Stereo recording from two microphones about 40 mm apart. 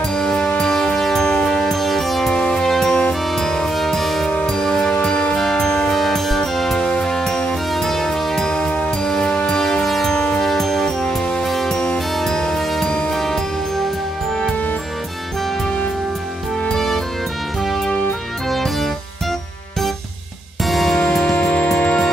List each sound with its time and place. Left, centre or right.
0.1 s music: centre
2.3 s music: centre
2.6 s music: centre
4.9 s music: left
5.9 s music: centre
8.5 s music: centre
9.6 s music: centre
10.1 s music: centre
10.4 s music: centre
16.7 s music: centre
18.5 s music: centre
20.6 s music: centre